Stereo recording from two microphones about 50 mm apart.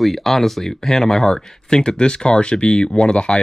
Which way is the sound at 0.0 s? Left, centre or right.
Centre.